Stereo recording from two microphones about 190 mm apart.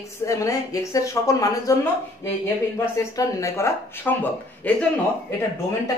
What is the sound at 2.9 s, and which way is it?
A woman's voice, 15° left (ahead or behind).